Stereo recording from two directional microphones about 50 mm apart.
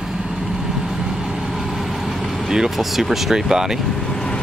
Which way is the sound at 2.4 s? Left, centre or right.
Centre.